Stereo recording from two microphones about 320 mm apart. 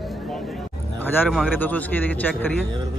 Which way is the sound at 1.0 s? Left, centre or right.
Centre.